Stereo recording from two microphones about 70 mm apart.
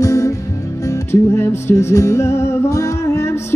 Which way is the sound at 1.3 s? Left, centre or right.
Left.